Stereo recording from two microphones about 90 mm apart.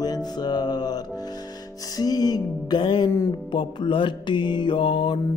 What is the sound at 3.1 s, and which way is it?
Music, 35° left (ahead or behind).